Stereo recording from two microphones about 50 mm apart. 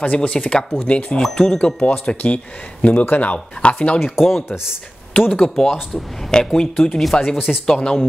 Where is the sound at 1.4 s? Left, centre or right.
Centre.